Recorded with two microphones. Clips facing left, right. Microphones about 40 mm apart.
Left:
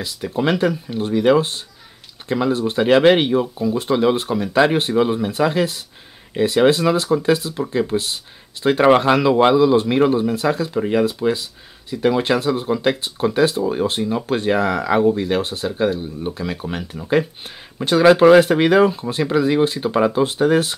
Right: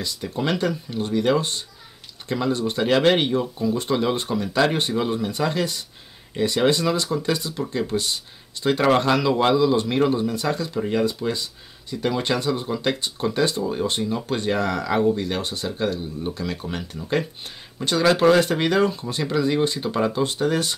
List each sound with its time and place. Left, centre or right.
0.0 s speech: centre